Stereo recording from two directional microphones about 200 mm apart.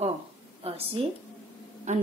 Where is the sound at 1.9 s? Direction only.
35° right (ahead or behind).